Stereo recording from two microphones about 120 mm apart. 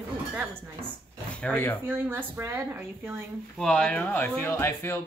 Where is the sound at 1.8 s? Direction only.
15° right (ahead or behind).